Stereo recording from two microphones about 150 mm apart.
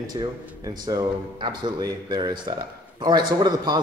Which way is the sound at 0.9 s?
30° right (ahead or behind).